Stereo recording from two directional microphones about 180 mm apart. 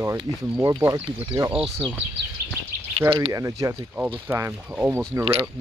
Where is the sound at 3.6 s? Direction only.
10° right (ahead or behind).